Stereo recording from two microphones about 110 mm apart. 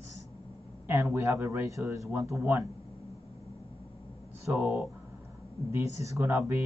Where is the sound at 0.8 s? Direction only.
20° right (ahead or behind).